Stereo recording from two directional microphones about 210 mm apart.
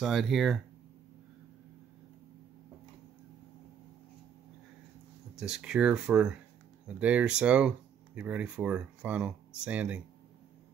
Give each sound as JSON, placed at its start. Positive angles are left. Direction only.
{"t": 0.0, "sound": "speech", "side_deg": 0}
{"t": 5.3, "sound": "speech", "side_deg": -5}